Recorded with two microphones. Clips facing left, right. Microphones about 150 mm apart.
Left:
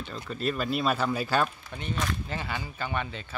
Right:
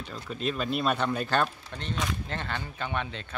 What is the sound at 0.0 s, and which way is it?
Speech, centre (ahead or behind).